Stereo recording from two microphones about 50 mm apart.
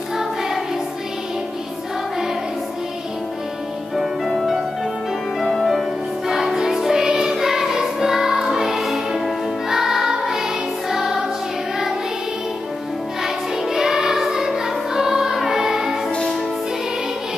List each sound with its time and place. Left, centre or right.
0.2 s choir: centre
3.9 s music: centre
13.2 s music: centre
16.1 s music: centre